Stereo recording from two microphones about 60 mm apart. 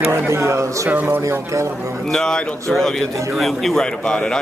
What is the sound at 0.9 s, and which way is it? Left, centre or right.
Speech, right.